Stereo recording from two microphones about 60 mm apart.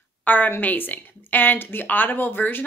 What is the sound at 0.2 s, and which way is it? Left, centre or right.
A woman's voice, left.